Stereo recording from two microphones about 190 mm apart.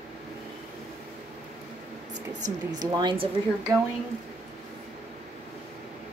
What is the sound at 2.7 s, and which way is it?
A woman's voice, 20° right (ahead or behind).